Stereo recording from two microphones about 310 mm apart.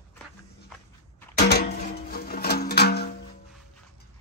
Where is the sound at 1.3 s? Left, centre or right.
Left.